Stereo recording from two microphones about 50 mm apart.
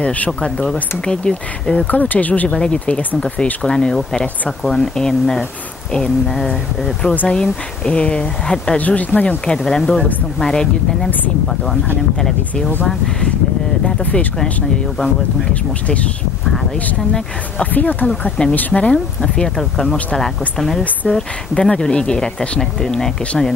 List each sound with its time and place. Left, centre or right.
0.0 s speech: left
1.9 s speech: left
2.5 s speech: centre
8.7 s speech: left
9.7 s speech: centre
12.2 s speech: centre
13.8 s speech: left
17.7 s speech: left
18.7 s speech: left
19.3 s speech: centre